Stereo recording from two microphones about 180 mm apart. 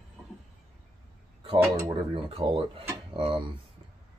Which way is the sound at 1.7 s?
30° right (ahead or behind).